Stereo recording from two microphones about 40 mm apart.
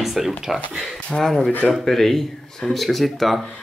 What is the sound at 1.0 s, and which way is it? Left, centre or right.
Speech, left.